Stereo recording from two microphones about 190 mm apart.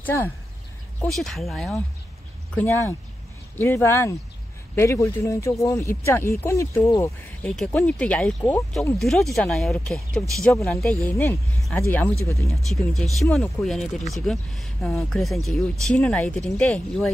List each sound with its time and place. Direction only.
0.0 s speech: 10° left (ahead or behind)
2.5 s speech: 10° left (ahead or behind)
12.6 s speech: centre (ahead or behind)